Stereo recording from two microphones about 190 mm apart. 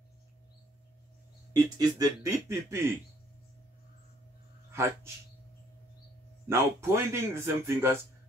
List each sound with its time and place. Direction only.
1.5 s a man's voice: 20° right (ahead or behind)
4.7 s a man's voice: 15° right (ahead or behind)
6.4 s a man's voice: 15° right (ahead or behind)